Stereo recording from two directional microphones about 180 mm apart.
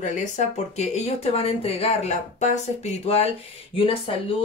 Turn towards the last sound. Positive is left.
turn(degrees=30)  # may be behind; listen again after turning